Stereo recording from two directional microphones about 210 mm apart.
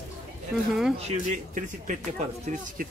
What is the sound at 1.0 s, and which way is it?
Speech, 35° right (ahead or behind).